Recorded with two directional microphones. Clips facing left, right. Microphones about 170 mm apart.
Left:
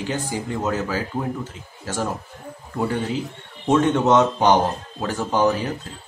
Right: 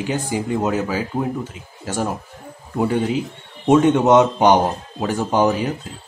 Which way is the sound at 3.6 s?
15° right (ahead or behind).